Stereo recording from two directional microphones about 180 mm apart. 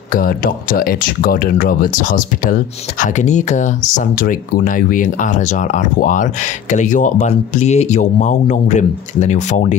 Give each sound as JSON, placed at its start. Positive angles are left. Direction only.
{"t": 0.1, "sound": "speech", "side_deg": 50}